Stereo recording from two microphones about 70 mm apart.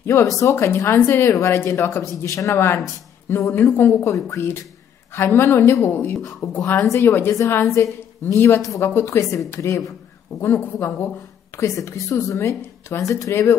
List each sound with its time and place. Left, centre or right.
0.0 s speech: left
6.5 s speech: left
6.8 s speech: left
7.7 s a woman's voice: left
11.5 s speech: left